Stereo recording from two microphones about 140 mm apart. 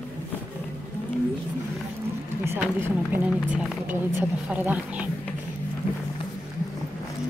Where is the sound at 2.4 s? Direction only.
15° right (ahead or behind).